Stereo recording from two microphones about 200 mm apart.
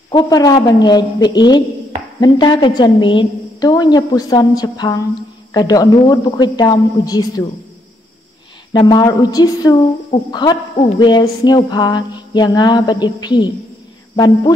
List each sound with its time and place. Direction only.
0.1 s a woman's voice: 20° left (ahead or behind)
8.7 s a woman's voice: 20° left (ahead or behind)